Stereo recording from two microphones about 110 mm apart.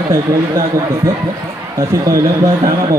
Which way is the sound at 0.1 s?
25° right (ahead or behind).